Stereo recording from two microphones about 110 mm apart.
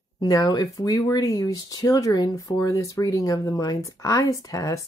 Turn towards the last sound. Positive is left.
turn(degrees=30)  # may be behind; listen again after turning